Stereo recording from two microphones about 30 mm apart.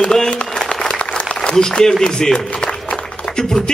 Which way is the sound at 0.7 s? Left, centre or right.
Left.